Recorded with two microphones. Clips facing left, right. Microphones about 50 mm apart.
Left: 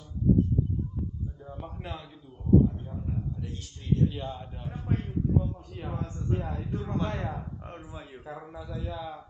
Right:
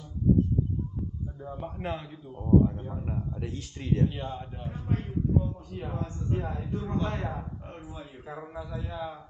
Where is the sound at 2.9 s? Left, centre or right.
Right.